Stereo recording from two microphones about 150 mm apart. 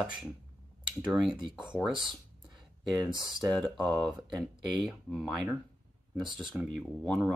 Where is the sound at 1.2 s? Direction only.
30° right (ahead or behind).